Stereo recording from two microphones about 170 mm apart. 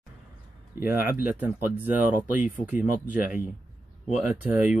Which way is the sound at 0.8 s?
60° left (ahead or behind).